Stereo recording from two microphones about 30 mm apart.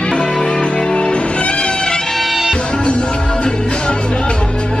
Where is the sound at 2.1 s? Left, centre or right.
Centre.